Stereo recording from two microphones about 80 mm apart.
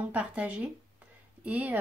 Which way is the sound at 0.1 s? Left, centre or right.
Centre.